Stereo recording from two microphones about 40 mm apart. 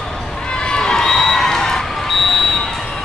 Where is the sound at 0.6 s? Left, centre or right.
Centre.